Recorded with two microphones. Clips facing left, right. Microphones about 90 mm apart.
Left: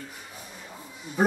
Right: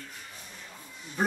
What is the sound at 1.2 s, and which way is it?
Speech, 10° left (ahead or behind).